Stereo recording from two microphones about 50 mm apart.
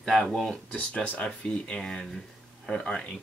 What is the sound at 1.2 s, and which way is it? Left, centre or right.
Speech, centre.